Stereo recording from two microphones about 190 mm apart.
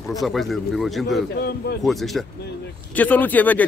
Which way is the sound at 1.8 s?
Centre (ahead or behind).